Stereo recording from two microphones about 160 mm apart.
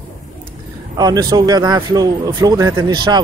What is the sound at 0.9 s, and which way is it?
A man's voice, 25° right (ahead or behind).